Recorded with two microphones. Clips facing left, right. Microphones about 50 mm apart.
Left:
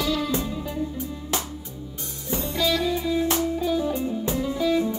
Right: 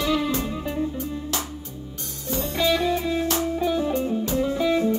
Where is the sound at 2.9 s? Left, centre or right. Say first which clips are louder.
Even; right.